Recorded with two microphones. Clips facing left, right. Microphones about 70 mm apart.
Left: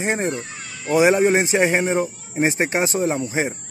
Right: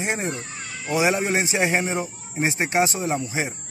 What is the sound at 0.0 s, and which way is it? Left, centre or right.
Speech, left.